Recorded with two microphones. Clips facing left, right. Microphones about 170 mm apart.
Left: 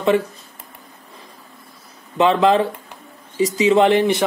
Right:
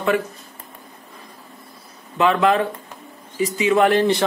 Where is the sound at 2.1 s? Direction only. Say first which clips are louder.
Left 2 dB; 25° left (ahead or behind).